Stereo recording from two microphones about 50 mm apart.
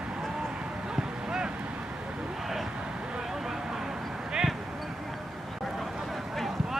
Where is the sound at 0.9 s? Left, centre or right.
Centre.